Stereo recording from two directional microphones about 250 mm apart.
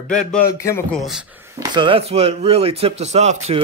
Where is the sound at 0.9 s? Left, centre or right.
Centre.